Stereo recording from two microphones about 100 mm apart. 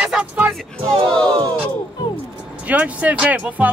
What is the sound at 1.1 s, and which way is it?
Speech, 10° left (ahead or behind).